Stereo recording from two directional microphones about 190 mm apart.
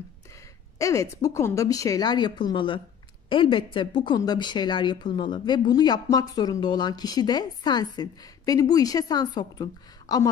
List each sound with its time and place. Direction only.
0.7 s a woman's voice: 15° left (ahead or behind)